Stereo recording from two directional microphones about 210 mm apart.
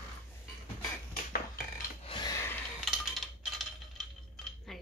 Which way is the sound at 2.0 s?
20° left (ahead or behind).